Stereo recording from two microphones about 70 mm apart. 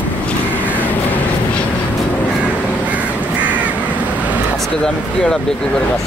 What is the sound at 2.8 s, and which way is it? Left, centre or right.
Crow, right.